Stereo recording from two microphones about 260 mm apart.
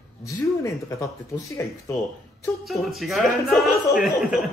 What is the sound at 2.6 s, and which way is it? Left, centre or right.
Speech, centre.